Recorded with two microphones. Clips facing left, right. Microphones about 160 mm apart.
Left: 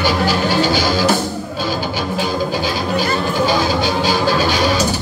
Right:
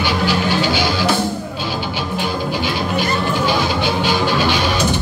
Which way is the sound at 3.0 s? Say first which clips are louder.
Left 2 dB; 40° left (ahead or behind).